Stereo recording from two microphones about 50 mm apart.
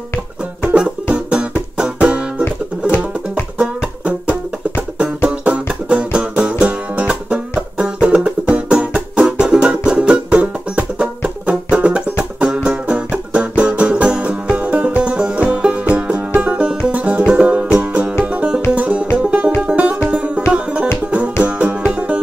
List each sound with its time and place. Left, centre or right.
0.7 s music: right
3.5 s music: right